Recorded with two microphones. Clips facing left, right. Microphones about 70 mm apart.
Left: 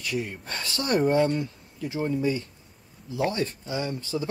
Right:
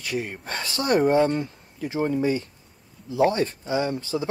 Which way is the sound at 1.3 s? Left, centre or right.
Right.